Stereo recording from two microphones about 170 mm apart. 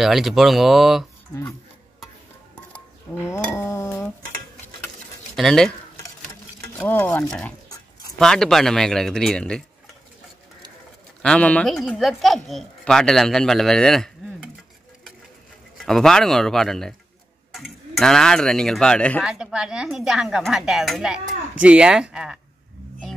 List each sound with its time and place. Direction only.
0.0 s speech: centre (ahead or behind)
3.3 s a sound: 15° left (ahead or behind)
5.3 s speech: 5° left (ahead or behind)
6.8 s speech: 10° left (ahead or behind)
11.2 s speech: 10° left (ahead or behind)
15.8 s speech: 5° left (ahead or behind)
19.2 s speech: 5° right (ahead or behind)